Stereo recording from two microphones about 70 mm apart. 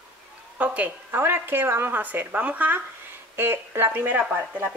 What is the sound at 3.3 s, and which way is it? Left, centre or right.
Speech, right.